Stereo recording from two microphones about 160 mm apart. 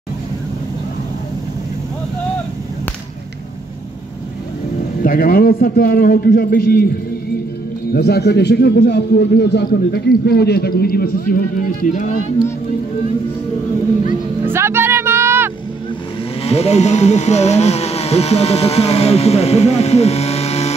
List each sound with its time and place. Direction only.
5.0 s a man's voice: 60° left (ahead or behind)
7.9 s a man's voice: 90° left; by 11.4 s 65° left (ahead or behind)
11.9 s speech: 50° left (ahead or behind)
14.4 s music: 15° right (ahead or behind)
16.4 s speech: 40° left (ahead or behind)